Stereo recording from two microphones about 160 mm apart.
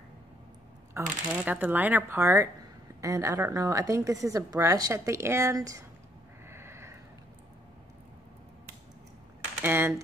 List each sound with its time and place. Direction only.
1.0 s a woman's voice: 15° right (ahead or behind)
6.5 s a sound: 15° right (ahead or behind)
9.6 s speech: 10° right (ahead or behind)